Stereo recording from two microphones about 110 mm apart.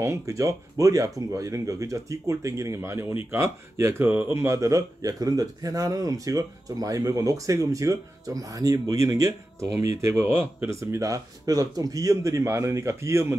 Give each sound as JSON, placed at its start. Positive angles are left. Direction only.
{"t": 0.0, "sound": "speech", "side_deg": -25}